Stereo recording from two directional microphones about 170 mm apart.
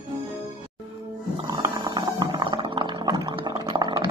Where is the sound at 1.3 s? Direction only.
20° right (ahead or behind).